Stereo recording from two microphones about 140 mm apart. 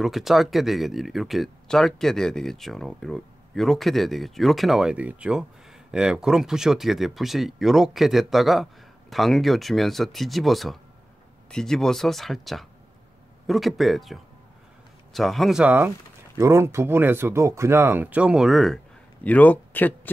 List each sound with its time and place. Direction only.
0.0 s speech: centre (ahead or behind)
19.2 s speech: 10° left (ahead or behind)